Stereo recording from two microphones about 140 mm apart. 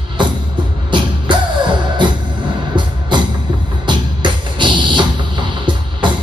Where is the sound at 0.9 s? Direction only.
35° right (ahead or behind).